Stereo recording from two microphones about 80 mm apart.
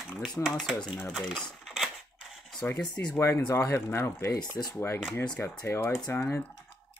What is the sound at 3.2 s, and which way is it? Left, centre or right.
Speech, left.